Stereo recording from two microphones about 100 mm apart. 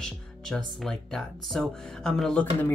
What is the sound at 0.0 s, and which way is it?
Speech, 5° left (ahead or behind).